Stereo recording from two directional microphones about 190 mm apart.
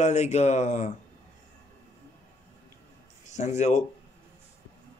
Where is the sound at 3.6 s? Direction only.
35° left (ahead or behind).